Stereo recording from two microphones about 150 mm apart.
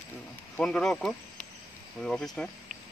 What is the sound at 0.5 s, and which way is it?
Speech, 5° left (ahead or behind).